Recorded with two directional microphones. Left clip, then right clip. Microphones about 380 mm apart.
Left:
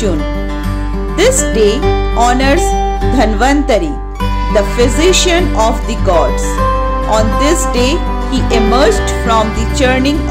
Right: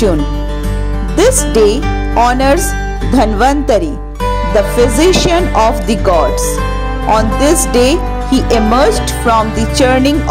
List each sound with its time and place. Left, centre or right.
1.1 s speech: centre